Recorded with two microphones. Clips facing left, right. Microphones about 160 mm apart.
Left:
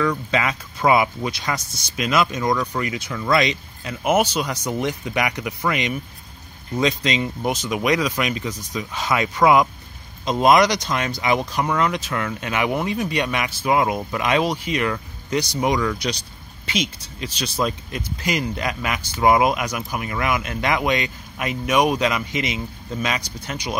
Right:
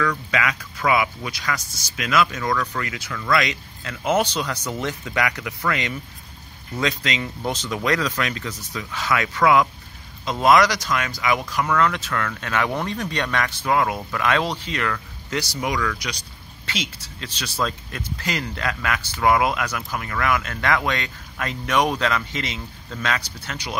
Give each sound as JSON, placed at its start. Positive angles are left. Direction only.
{"t": 0.0, "sound": "speech", "side_deg": 25}